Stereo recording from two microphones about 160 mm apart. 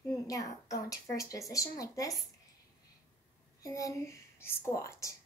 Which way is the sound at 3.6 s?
20° left (ahead or behind).